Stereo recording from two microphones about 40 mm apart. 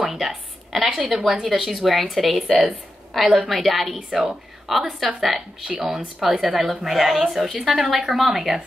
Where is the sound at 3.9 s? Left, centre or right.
Centre.